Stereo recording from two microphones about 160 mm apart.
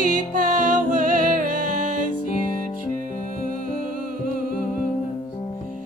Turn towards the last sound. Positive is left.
turn(degrees=-60)  # may be behind; listen again after turning